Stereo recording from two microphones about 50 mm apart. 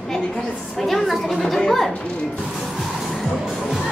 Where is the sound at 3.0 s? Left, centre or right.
Centre.